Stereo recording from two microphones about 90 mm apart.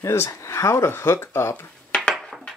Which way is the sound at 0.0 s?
30° left (ahead or behind).